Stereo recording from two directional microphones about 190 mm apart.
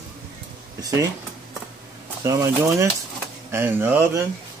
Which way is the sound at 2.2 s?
15° right (ahead or behind).